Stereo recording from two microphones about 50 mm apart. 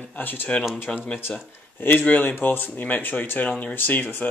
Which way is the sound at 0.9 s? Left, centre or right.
Left.